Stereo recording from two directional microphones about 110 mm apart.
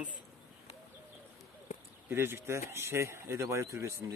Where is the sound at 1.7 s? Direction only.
90° left.